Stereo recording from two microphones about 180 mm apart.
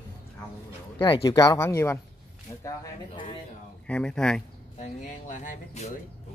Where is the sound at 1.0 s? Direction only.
20° left (ahead or behind).